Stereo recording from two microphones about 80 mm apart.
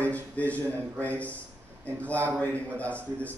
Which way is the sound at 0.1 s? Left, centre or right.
Centre.